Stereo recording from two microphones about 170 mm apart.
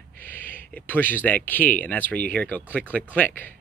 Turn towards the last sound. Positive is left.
turn(degrees=10)  # may be behind; listen again after turning